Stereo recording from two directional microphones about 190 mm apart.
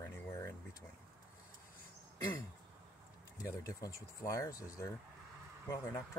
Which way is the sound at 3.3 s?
20° left (ahead or behind).